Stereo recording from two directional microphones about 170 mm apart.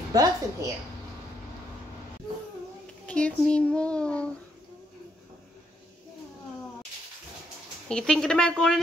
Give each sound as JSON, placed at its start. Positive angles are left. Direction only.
{"t": 0.1, "sound": "a woman's voice", "side_deg": -20}
{"t": 3.1, "sound": "a child's voice", "side_deg": 5}
{"t": 7.9, "sound": "a woman's voice", "side_deg": 5}